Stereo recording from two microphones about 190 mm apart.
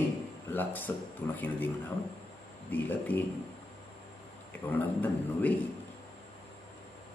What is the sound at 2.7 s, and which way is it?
Speech, 10° left (ahead or behind).